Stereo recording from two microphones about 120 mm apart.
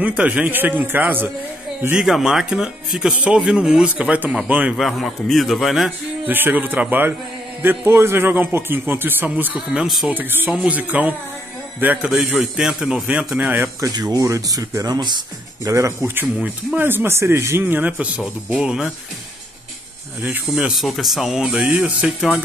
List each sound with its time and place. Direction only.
0.0 s speech: 10° right (ahead or behind)
2.0 s speech: 5° right (ahead or behind)
4.7 s speech: centre (ahead or behind)
6.2 s a man's voice: 15° right (ahead or behind)
9.7 s speech: 5° right (ahead or behind)
10.1 s speech: 15° right (ahead or behind)
13.7 s a man's voice: 30° right (ahead or behind); by 18.9 s 5° right (ahead or behind)
20.2 s speech: 15° right (ahead or behind)
20.5 s speech: 5° right (ahead or behind)